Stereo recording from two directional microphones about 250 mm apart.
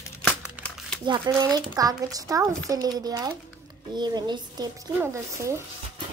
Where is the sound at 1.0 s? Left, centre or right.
Centre.